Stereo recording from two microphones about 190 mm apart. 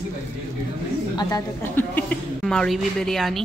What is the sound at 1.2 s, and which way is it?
A woman's voice, 20° left (ahead or behind).